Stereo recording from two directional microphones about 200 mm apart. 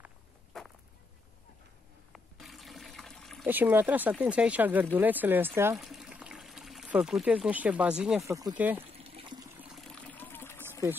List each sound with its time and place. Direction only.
0.5 s a sound: centre (ahead or behind)
2.1 s liquid: centre (ahead or behind)
3.4 s speech: 10° right (ahead or behind)
8.3 s speech: 15° right (ahead or behind)
8.9 s water: 30° right (ahead or behind)
9.6 s trickle: centre (ahead or behind)